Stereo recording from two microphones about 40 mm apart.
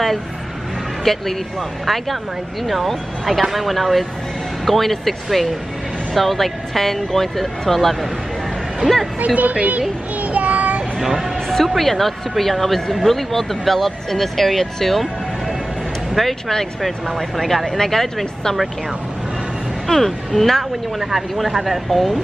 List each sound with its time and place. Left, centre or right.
1.1 s speech: centre
2.6 s speech: centre
9.2 s a sound: right
11.0 s speech: centre
11.5 s speech: centre
16.2 s speech: centre
19.9 s speech: centre
21.0 s speech: centre